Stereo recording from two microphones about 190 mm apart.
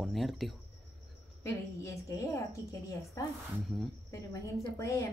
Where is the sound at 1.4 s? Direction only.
15° left (ahead or behind).